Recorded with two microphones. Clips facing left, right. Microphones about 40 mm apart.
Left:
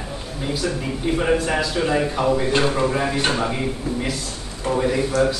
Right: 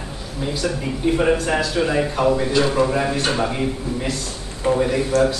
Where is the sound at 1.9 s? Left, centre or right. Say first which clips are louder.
Right 1 dB; centre.